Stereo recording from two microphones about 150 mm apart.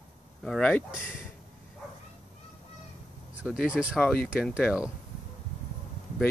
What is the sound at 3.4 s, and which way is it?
Speech, 5° right (ahead or behind).